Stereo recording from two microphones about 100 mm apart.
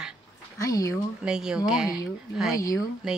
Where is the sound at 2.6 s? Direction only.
35° left (ahead or behind).